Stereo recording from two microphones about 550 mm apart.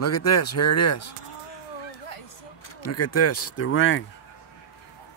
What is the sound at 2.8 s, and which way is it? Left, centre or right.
Speech, left.